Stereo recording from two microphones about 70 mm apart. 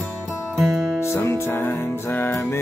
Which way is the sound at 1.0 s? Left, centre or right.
Left.